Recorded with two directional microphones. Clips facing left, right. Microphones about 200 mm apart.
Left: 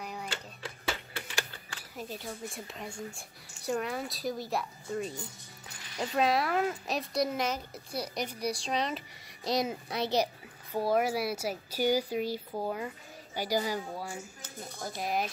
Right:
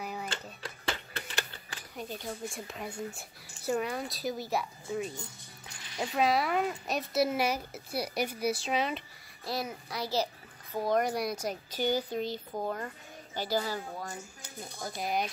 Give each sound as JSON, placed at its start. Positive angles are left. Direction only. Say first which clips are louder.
{"t": 0.0, "sound": "a sound", "louder": "right 1 dB", "side_deg": -5}
{"t": 2.0, "sound": "speech", "louder": "right 1 dB", "side_deg": 0}
{"t": 9.4, "sound": "a child's voice", "louder": "left 5 dB", "side_deg": 20}
{"t": 10.2, "sound": "a child's voice", "louder": "left 2 dB", "side_deg": 10}
{"t": 15.0, "sound": "speech", "louder": "even", "side_deg": 0}